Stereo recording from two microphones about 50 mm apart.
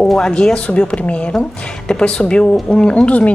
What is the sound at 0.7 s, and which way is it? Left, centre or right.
Speech, left.